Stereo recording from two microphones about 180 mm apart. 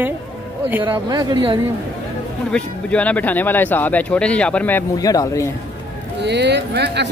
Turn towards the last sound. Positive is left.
turn(degrees=-70)  # may be behind; listen again after turning